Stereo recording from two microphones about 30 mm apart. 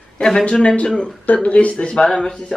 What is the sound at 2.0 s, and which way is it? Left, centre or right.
Speech, left.